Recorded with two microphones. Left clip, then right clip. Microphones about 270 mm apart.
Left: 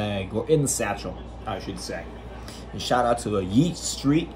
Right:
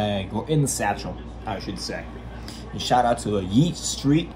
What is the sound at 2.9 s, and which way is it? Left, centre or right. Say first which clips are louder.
Speech: right 3 dB; right.